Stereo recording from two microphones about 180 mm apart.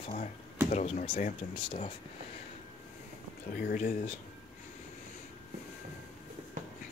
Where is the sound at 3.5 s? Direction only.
55° left (ahead or behind).